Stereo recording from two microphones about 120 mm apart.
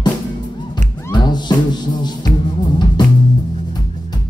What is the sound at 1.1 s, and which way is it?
Music, 35° left (ahead or behind).